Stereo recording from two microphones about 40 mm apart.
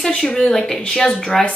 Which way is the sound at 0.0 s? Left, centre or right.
Centre.